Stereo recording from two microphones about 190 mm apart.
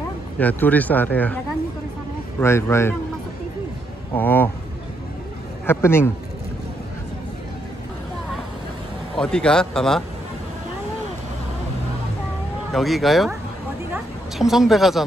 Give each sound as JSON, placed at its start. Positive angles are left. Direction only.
{"t": 0.4, "sound": "speech", "side_deg": 10}
{"t": 2.4, "sound": "speech", "side_deg": 15}
{"t": 4.1, "sound": "speech", "side_deg": 10}
{"t": 5.7, "sound": "speech", "side_deg": 15}
{"t": 9.1, "sound": "speech", "side_deg": 5}
{"t": 12.7, "sound": "a woman's voice", "side_deg": 0}